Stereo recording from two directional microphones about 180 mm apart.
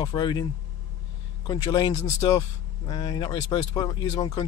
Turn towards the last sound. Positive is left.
turn(degrees=20)  # may be behind; listen again after turning